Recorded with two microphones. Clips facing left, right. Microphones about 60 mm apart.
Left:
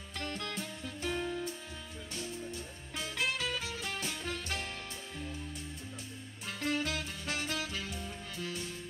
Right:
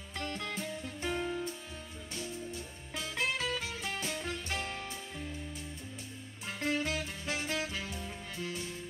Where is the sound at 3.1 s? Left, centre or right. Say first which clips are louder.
Right 1 dB; right.